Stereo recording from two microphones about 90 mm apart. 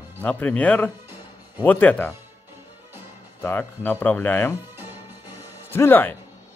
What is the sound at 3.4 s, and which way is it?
Speech, 25° left (ahead or behind).